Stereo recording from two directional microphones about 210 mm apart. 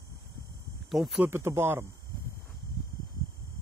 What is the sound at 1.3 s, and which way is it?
Speech, 10° right (ahead or behind).